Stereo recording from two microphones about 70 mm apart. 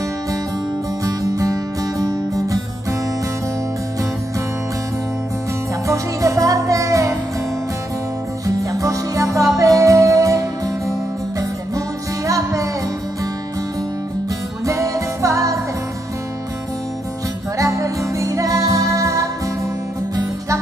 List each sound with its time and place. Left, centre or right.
1.0 s music: right
5.9 s music: right
8.7 s music: right
12.3 s music: right
14.7 s music: right
17.6 s music: right